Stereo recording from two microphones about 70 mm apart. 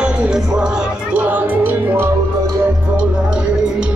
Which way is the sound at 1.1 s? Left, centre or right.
Right.